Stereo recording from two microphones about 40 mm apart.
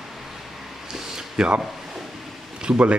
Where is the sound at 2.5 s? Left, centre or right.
Right.